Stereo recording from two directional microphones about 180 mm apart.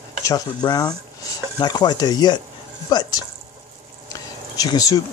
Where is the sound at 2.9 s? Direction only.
25° left (ahead or behind).